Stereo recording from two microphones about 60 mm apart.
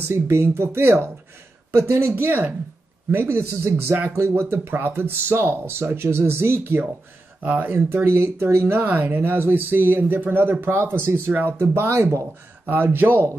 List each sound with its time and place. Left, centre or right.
0.1 s speech: right
7.4 s speech: right
7.7 s speech: right
8.8 s speech: right
12.6 s speech: right